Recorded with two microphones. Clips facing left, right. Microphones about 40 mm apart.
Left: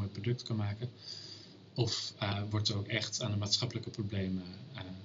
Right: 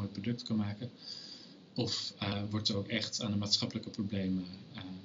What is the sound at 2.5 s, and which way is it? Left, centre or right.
Speech, left.